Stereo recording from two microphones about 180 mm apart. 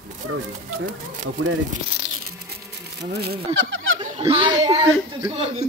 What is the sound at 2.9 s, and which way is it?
Speech, 65° right (ahead or behind).